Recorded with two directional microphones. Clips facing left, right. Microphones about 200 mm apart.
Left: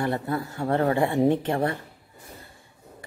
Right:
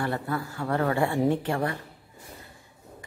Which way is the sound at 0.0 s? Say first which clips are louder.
Left 3 dB; 20° left (ahead or behind).